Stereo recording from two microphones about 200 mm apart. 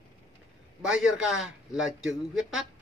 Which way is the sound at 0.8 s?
Centre (ahead or behind).